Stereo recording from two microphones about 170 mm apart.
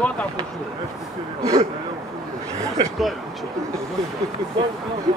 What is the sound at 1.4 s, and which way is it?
Speech, 20° right (ahead or behind).